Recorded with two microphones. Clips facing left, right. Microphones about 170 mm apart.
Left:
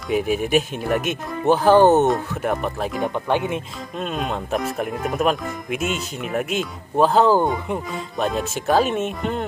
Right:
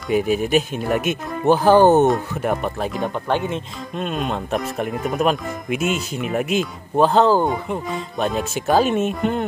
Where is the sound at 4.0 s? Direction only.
Centre (ahead or behind).